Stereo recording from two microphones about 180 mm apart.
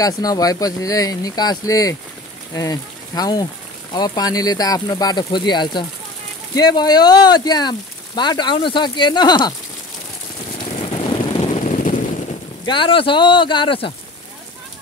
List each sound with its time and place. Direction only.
0.0 s speech: 20° left (ahead or behind)
10.9 s vehicle: 30° left (ahead or behind)
12.6 s speech: 25° left (ahead or behind)